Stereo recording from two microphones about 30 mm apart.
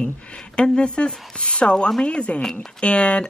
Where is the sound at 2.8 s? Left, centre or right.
Left.